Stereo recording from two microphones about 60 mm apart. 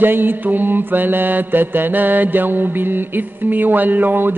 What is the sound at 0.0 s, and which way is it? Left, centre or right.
Mantra, right.